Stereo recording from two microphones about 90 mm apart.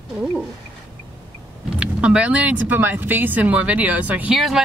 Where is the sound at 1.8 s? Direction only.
10° right (ahead or behind).